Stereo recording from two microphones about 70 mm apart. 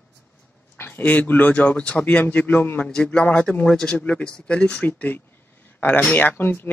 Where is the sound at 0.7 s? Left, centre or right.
Left.